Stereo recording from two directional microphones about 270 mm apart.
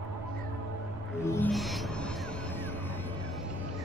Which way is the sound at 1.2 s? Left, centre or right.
Centre.